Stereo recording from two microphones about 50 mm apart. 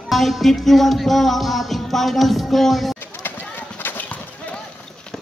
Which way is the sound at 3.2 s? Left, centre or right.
Left.